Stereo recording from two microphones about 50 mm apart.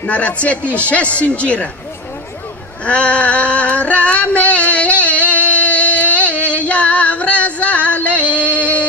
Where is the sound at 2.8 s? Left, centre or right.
Left.